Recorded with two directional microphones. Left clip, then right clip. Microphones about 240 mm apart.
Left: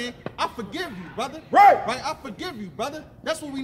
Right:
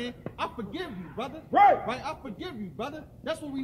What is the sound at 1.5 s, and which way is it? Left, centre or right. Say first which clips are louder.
Speech: left 6 dB; centre.